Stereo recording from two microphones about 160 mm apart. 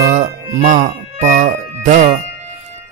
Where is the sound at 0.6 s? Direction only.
55° right (ahead or behind).